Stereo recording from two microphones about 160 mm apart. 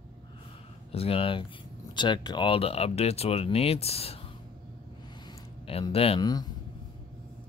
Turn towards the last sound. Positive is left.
turn(degrees=25)  # may be behind; listen again after turning